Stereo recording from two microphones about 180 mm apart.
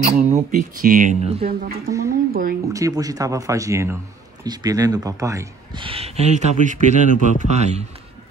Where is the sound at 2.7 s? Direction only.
20° right (ahead or behind).